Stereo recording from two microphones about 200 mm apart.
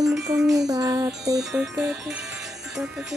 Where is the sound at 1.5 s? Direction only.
5° right (ahead or behind).